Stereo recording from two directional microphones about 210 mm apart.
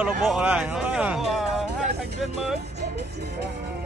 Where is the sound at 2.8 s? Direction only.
50° right (ahead or behind).